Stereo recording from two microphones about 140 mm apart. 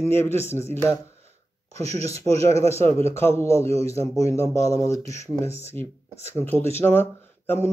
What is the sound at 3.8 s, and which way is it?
Speech, 45° right (ahead or behind).